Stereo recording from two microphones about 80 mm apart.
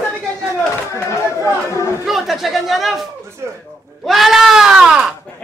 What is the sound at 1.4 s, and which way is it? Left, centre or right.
Chatter, left.